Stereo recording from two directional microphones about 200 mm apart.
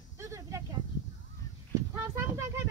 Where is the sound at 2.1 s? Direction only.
10° right (ahead or behind).